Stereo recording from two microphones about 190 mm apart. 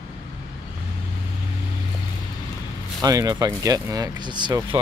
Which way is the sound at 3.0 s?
20° right (ahead or behind).